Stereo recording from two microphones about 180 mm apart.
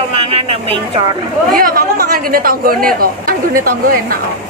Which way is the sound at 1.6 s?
55° right (ahead or behind).